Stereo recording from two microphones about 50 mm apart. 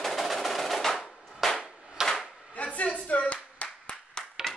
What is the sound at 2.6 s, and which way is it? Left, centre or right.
Clapping, left.